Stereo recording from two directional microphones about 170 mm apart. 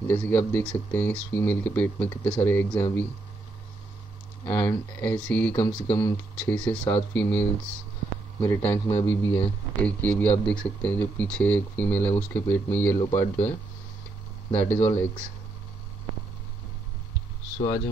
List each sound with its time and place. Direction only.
0.1 s speech: 10° left (ahead or behind)
4.5 s speech: 10° left (ahead or behind)